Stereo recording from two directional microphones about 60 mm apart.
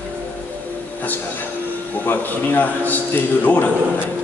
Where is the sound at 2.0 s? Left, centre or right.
Left.